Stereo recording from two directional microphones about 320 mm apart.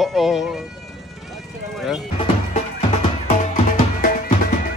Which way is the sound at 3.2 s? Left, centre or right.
Left.